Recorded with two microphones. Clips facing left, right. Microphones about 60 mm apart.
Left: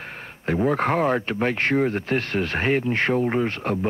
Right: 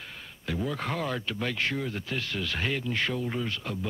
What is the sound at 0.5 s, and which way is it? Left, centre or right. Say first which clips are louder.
Speech: left 10 dB; left.